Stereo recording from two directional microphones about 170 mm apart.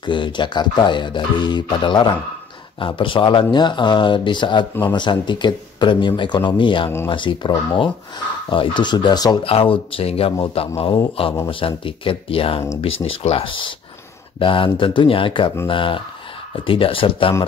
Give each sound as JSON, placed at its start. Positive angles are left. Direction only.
{"t": 0.0, "sound": "speech", "side_deg": 30}